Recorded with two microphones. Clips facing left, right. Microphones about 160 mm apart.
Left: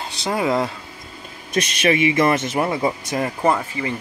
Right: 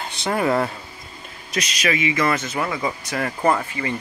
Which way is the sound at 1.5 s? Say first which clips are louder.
Left 5 dB; 25° left (ahead or behind).